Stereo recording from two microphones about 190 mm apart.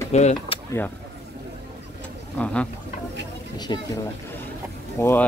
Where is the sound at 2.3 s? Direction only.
5° left (ahead or behind).